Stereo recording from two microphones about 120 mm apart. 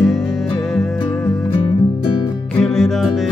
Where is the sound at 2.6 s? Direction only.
5° left (ahead or behind).